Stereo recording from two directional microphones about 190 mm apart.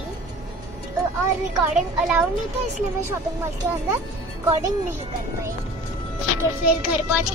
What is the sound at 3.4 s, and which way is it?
Speech, 10° right (ahead or behind).